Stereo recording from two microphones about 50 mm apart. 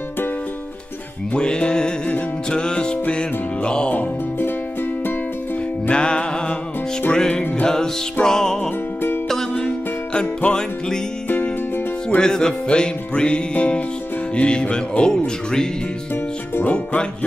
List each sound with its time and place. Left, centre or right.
1.3 s music: centre
5.9 s music: left
10.4 s music: left
12.2 s music: centre